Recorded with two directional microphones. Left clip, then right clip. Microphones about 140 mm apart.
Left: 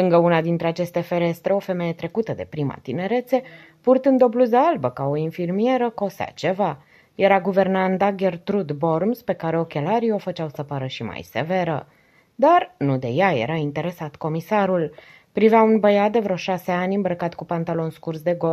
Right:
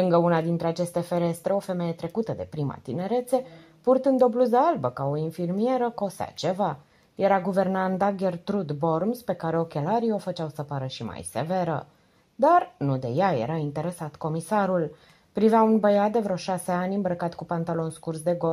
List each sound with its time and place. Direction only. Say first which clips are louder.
0.0 s speech: left 5 dB; 20° left (ahead or behind)